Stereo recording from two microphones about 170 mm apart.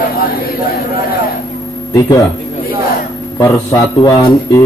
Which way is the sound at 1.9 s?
20° left (ahead or behind).